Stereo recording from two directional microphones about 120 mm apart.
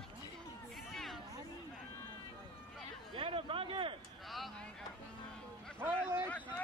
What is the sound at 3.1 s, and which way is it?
Speech, 50° right (ahead or behind).